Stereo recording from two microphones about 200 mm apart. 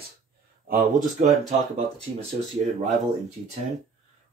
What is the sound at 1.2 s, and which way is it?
Speech, 35° right (ahead or behind).